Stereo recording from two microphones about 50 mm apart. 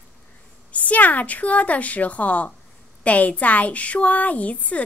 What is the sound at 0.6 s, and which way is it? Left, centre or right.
A woman's voice, left.